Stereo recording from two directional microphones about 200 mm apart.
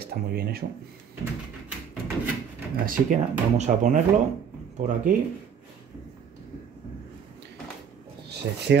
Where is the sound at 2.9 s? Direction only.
40° right (ahead or behind).